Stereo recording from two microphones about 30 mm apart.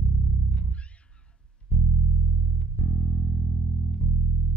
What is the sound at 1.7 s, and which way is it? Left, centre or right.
Music, left.